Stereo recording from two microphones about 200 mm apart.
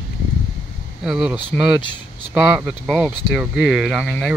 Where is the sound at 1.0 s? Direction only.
Centre (ahead or behind).